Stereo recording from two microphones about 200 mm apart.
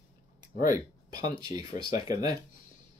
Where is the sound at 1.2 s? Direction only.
20° right (ahead or behind).